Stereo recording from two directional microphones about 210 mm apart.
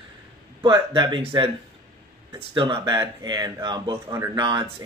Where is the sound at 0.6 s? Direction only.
20° right (ahead or behind).